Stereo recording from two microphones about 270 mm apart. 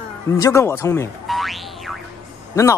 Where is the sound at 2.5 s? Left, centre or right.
Centre.